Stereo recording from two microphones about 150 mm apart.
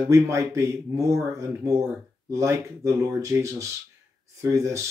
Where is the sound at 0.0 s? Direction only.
20° right (ahead or behind).